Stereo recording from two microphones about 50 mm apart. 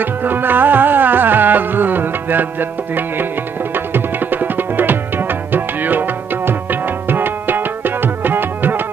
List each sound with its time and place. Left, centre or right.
0.0 s music: right
3.7 s music: right